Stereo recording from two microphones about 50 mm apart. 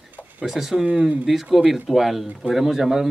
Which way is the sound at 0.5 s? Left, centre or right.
Centre.